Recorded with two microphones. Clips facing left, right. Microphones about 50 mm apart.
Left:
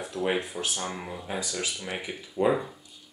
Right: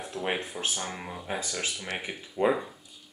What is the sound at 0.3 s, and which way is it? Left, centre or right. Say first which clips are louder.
Speech: even; centre.